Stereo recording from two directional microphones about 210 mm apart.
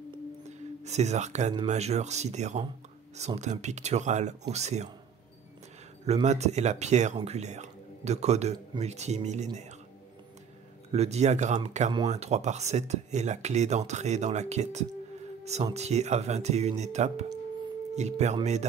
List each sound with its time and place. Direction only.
0.1 s music: 30° right (ahead or behind)
1.7 s speech: 30° right (ahead or behind)
6.0 s speech: 30° right (ahead or behind)
10.9 s speech: 30° right (ahead or behind)